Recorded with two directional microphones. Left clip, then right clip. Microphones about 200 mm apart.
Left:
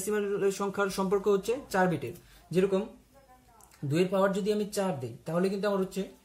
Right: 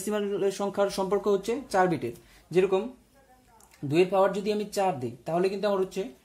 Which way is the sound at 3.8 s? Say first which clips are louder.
Right 4 dB; 40° right (ahead or behind).